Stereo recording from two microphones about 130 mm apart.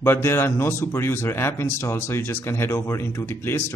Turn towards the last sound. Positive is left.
turn(degrees=20)  # may be behind; listen again after turning